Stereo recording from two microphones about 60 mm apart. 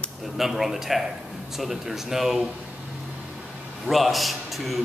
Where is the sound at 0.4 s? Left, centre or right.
Centre.